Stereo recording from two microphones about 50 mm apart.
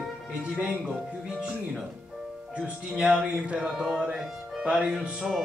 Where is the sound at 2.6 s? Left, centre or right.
Centre.